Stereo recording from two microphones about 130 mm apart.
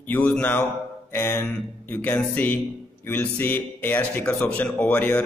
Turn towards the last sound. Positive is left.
turn(degrees=15)  # may be behind; listen again after turning